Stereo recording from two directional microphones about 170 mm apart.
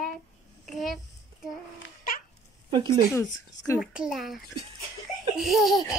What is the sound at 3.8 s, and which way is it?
Speech, 5° right (ahead or behind).